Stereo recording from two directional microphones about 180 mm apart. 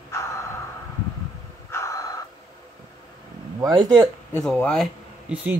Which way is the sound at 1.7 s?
15° left (ahead or behind).